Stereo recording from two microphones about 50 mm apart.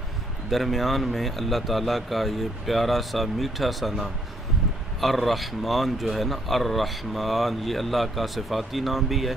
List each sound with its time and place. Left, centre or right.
0.5 s speech: centre
5.0 s speech: centre